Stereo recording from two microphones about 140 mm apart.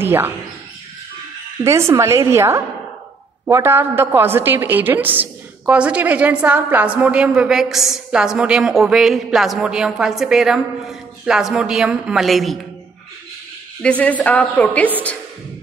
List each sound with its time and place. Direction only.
0.0 s speech: 15° right (ahead or behind)
1.6 s a woman's voice: 20° right (ahead or behind); by 12.5 s centre (ahead or behind)
13.8 s a woman's voice: 10° left (ahead or behind)